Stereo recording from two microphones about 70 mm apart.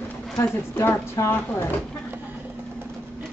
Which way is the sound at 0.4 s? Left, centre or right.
Left.